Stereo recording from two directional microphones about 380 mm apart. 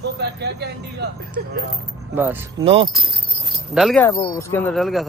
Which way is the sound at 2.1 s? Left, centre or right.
Centre.